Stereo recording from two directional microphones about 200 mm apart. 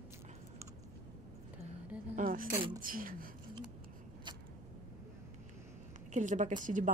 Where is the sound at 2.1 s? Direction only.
45° right (ahead or behind).